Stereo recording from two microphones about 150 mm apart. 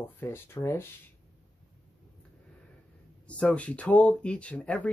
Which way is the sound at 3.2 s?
10° left (ahead or behind).